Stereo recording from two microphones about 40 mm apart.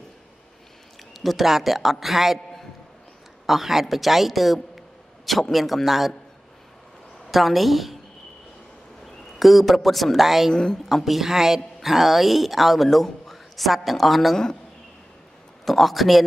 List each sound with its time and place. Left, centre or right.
1.1 s a woman's voice: centre
3.4 s a woman's voice: centre
7.2 s a woman's voice: centre
9.0 s a man's voice: centre
10.5 s speech: centre
11.1 s a woman's voice: centre
14.3 s a man's voice: centre
15.6 s a woman's voice: centre